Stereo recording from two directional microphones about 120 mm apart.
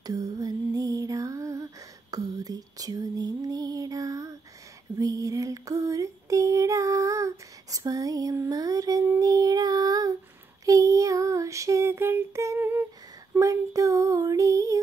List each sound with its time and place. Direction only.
0.0 s lullaby: 30° right (ahead or behind)
4.9 s female singing: 30° right (ahead or behind)
9.2 s child singing: 30° right (ahead or behind)